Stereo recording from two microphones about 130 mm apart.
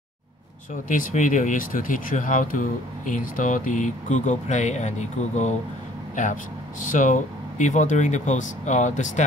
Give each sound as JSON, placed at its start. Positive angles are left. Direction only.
{"t": 0.8, "sound": "speech", "side_deg": 85}
{"t": 6.9, "sound": "speech", "side_deg": 80}